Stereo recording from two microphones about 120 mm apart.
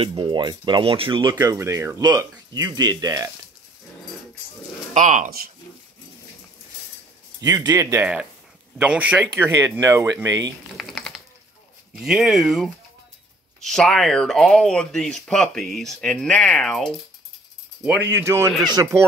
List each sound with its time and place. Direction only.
0.0 s speech: 45° right (ahead or behind)
1.5 s speech: 25° right (ahead or behind)
2.5 s speech: 35° right (ahead or behind)
4.9 s speech: 80° right
7.4 s speech: 30° right (ahead or behind)
8.0 s speech: 10° right (ahead or behind)
9.5 s speech: 25° right (ahead or behind)
10.8 s a sound: centre (ahead or behind)
11.9 s speech: 5° right (ahead or behind)
18.1 s speech: 20° right (ahead or behind)
18.7 s speech: 30° right (ahead or behind)